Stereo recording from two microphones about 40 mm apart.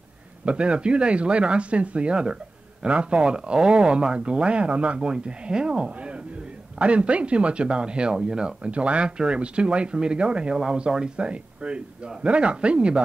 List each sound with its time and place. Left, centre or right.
0.5 s speech: right
10.5 s speech: centre